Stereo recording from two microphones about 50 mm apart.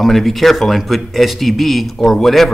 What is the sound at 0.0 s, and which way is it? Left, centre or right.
Speech, centre.